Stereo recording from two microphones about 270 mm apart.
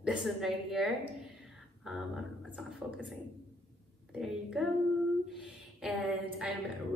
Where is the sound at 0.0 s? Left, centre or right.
Centre.